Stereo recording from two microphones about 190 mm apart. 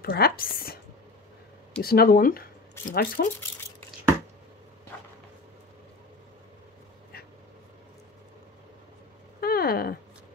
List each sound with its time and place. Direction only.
0.0 s speech: 55° left (ahead or behind)
1.8 s speech: 55° left (ahead or behind)
9.4 s a sound: 55° left (ahead or behind)